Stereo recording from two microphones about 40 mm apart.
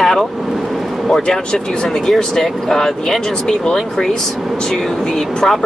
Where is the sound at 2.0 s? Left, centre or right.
Centre.